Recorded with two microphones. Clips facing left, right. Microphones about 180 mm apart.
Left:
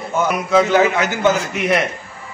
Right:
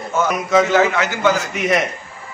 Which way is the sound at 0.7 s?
15° left (ahead or behind).